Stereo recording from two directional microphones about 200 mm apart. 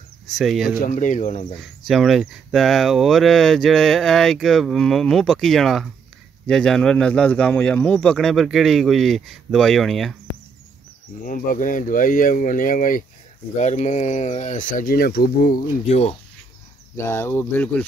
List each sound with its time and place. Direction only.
0.4 s speech: centre (ahead or behind)
0.7 s speech: 40° left (ahead or behind)
1.9 s speech: centre (ahead or behind)
11.2 s speech: 40° left (ahead or behind)
15.9 s speech: 30° left (ahead or behind)
16.9 s speech: 10° left (ahead or behind)